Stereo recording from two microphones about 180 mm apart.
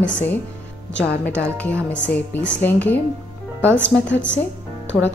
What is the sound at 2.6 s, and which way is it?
A woman's voice, 10° left (ahead or behind).